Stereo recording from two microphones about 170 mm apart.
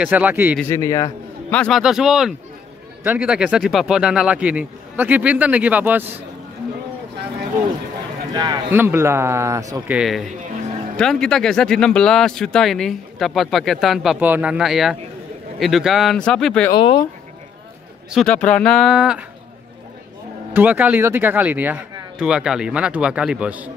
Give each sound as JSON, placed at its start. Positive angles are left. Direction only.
{"t": 0.0, "sound": "speech", "side_deg": -10}
{"t": 0.7, "sound": "a man's voice", "side_deg": 15}
{"t": 1.5, "sound": "a man's voice", "side_deg": 10}
{"t": 1.8, "sound": "speech", "side_deg": -5}
{"t": 8.3, "sound": "a man's voice", "side_deg": -25}
{"t": 8.7, "sound": "speech", "side_deg": -15}
{"t": 9.8, "sound": "speech", "side_deg": -5}
{"t": 16.7, "sound": "speech", "side_deg": 30}
{"t": 18.1, "sound": "speech", "side_deg": 5}
{"t": 20.5, "sound": "speech", "side_deg": -10}